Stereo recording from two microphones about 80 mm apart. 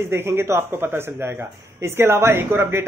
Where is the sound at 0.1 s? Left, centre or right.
Right.